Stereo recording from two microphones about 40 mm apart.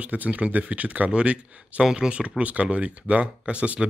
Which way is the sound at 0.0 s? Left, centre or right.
Right.